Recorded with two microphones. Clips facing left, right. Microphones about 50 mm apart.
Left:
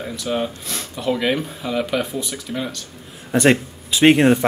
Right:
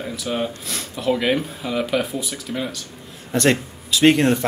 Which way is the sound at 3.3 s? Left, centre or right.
Centre.